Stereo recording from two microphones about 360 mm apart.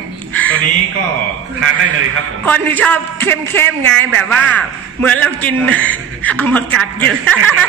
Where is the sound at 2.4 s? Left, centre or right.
Centre.